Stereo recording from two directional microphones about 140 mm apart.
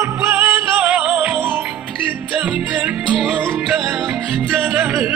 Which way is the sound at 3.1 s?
Centre (ahead or behind).